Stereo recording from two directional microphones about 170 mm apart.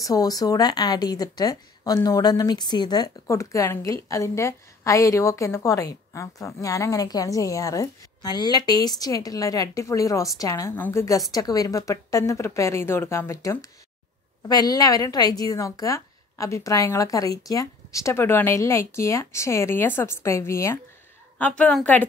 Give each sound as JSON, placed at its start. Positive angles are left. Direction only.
{"t": 0.0, "sound": "a woman's voice", "side_deg": 20}